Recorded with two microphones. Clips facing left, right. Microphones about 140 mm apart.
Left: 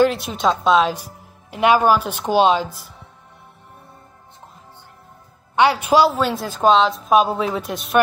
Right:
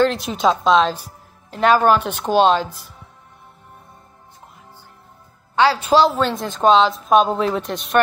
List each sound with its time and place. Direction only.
0.0 s a woman's voice: 5° left (ahead or behind)
5.6 s a woman's voice: 15° left (ahead or behind)